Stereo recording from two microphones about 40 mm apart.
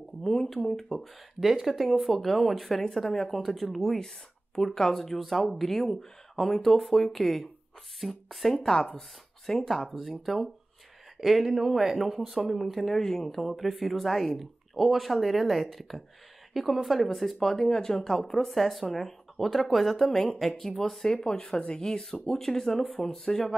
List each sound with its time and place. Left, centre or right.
0.2 s speech: centre
1.4 s speech: centre
8.7 s speech: centre
9.8 s speech: centre; by 22.4 s left
22.4 s speech: centre